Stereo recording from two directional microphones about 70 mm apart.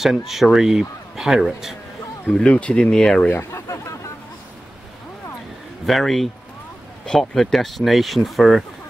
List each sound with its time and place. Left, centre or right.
0.0 s a man's voice: centre
2.3 s speech: centre
3.3 s speech: left
3.6 s a sound: left
5.9 s a man's voice: centre